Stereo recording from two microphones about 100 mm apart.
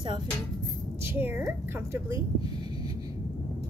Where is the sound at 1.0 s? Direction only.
20° right (ahead or behind).